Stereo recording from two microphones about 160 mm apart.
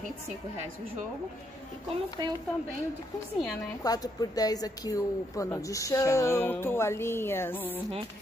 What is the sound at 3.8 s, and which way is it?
Speech, 25° left (ahead or behind).